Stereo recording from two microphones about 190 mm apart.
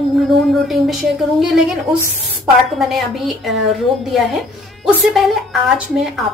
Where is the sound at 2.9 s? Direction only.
Centre (ahead or behind).